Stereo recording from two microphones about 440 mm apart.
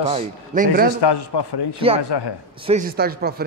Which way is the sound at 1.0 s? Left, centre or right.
Left.